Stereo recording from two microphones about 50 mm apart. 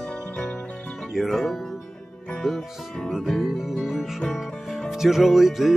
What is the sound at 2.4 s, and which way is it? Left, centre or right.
Speech, centre.